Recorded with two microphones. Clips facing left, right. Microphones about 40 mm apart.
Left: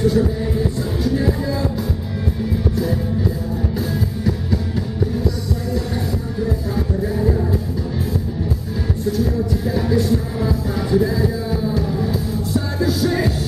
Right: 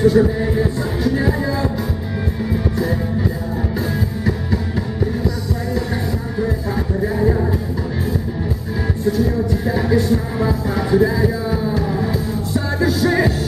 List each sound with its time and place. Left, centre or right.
0.0 s music: centre
7.2 s music: centre
9.1 s music: centre